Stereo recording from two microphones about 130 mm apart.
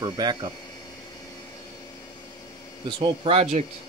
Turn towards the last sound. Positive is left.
turn(degrees=-50)  # may be behind; listen again after turning